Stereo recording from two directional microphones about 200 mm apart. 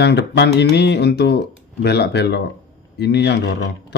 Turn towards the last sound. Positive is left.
turn(degrees=60)  # may be behind; listen again after turning